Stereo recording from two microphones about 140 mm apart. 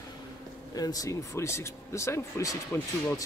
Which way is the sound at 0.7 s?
25° left (ahead or behind).